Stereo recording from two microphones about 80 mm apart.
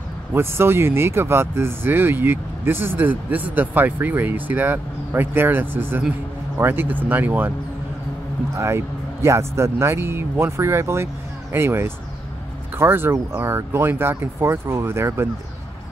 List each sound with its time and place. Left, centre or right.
0.3 s speech: right
8.5 s speech: right